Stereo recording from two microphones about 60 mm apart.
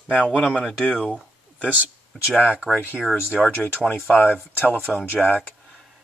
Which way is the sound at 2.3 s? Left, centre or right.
Left.